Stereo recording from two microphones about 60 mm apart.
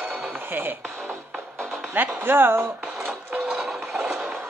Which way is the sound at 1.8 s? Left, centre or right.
Right.